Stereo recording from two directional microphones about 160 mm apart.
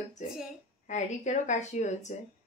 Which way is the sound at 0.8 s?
50° left (ahead or behind).